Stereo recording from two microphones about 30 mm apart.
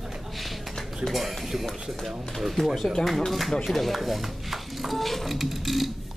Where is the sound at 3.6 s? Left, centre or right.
Centre.